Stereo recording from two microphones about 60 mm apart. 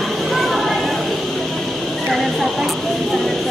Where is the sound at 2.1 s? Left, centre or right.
Centre.